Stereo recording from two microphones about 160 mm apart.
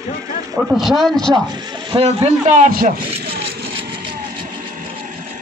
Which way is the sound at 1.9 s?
40° right (ahead or behind).